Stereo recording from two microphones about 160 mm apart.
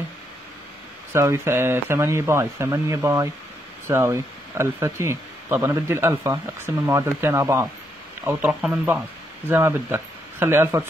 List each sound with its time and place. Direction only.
1.1 s speech: 15° right (ahead or behind)